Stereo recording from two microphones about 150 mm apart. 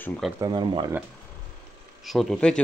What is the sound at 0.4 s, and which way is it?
Speech, 30° right (ahead or behind).